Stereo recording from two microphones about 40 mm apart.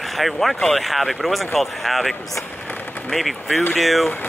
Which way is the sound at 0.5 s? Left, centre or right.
Centre.